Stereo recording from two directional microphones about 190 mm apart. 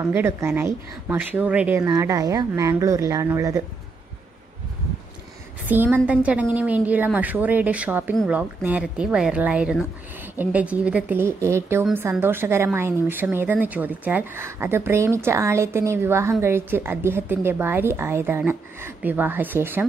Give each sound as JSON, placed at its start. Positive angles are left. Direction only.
{"t": 0.0, "sound": "a woman's voice", "side_deg": -10}
{"t": 5.7, "sound": "a woman's voice", "side_deg": -10}